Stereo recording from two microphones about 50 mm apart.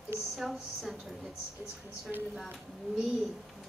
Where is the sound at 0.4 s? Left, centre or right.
Centre.